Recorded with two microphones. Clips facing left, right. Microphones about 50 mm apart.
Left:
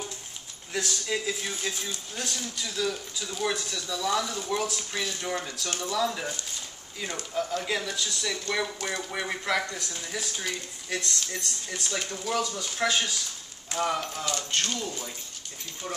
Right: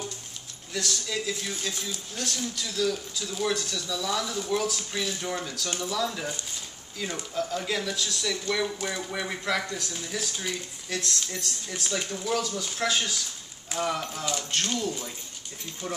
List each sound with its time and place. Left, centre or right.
0.7 s speech: left
7.6 s speech: centre